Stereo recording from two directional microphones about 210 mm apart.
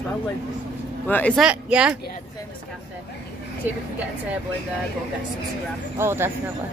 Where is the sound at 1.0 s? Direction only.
5° left (ahead or behind).